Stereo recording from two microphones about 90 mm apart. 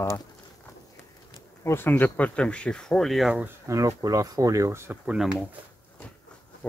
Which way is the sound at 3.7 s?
40° right (ahead or behind).